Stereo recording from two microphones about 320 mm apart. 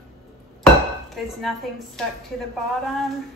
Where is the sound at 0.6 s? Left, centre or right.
Centre.